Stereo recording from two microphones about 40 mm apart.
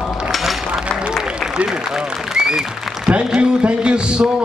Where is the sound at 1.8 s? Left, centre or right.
Centre.